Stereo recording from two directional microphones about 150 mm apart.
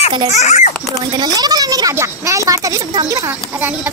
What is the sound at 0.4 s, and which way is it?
Speech, 50° left (ahead or behind).